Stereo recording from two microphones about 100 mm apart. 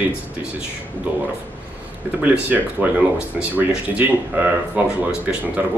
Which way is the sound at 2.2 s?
15° right (ahead or behind).